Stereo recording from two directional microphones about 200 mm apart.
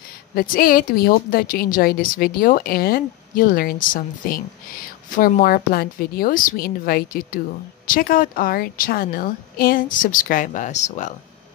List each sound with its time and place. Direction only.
0.3 s a woman's voice: 45° left (ahead or behind)